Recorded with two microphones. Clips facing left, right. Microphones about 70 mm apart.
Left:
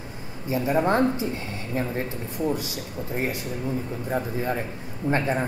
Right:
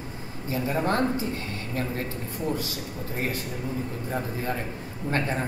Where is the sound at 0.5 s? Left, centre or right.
Centre.